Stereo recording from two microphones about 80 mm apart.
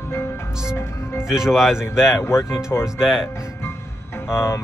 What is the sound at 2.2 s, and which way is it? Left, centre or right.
Speech, left.